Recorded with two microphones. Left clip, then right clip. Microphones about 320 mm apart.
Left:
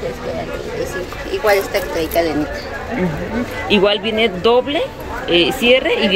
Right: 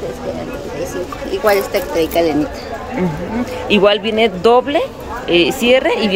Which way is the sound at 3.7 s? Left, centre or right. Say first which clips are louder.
Right 2 dB; centre.